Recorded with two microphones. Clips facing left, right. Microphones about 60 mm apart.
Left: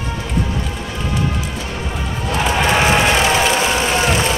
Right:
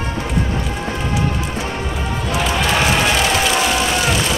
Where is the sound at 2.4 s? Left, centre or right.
Left.